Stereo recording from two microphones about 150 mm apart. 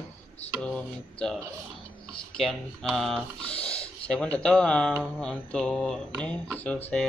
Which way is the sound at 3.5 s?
40° left (ahead or behind).